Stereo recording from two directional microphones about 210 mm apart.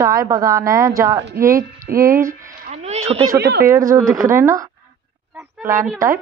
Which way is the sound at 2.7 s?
30° right (ahead or behind).